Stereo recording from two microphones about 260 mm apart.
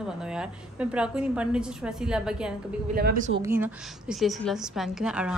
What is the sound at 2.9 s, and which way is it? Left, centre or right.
Speech, right.